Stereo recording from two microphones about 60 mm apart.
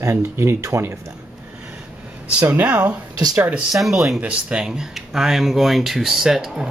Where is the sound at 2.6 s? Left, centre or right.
Centre.